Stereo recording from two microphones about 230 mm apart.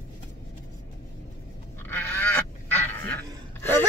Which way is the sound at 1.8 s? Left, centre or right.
Centre.